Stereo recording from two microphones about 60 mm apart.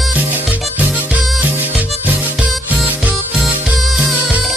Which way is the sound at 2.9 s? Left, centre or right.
Right.